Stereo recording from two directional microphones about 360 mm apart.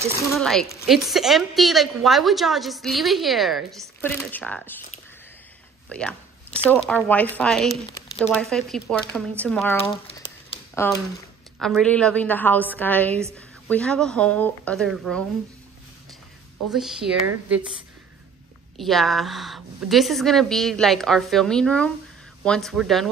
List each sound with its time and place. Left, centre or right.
0.1 s a woman's voice: centre
5.9 s a woman's voice: centre
10.0 s a sound: centre
10.7 s a woman's voice: centre
16.7 s a woman's voice: centre
18.8 s a woman's voice: centre